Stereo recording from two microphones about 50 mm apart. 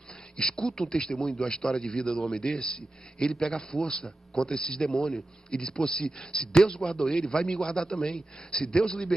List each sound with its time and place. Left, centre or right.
0.4 s a man's voice: centre
1.4 s a man's voice: centre